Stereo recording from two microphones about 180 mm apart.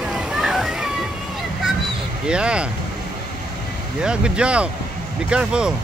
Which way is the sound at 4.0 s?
5° right (ahead or behind).